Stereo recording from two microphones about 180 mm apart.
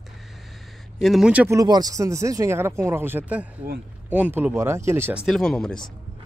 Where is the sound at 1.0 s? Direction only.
Centre (ahead or behind).